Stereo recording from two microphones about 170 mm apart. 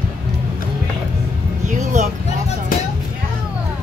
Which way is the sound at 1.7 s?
45° right (ahead or behind).